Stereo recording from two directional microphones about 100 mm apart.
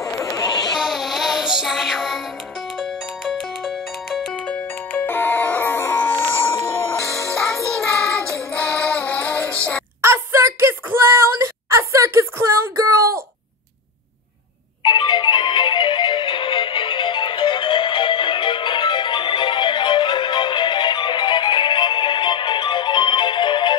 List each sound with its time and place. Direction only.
0.2 s a sound: 30° left (ahead or behind)
0.7 s music: centre (ahead or behind)
4.5 s music: 15° left (ahead or behind)
7.4 s music: 5° left (ahead or behind)
10.0 s a sound: 25° right (ahead or behind)
14.8 s music: 50° left (ahead or behind)